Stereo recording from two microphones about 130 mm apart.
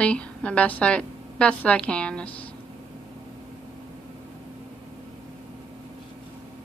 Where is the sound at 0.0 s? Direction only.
10° left (ahead or behind).